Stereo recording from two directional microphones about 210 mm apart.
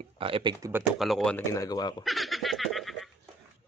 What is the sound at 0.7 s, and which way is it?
Speech, centre (ahead or behind).